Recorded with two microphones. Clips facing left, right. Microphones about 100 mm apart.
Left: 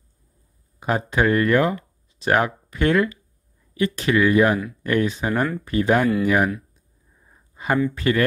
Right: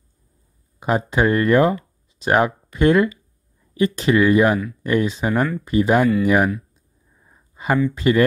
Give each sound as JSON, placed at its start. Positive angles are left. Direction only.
{"t": 0.7, "sound": "speech", "side_deg": -20}
{"t": 7.5, "sound": "speech", "side_deg": -20}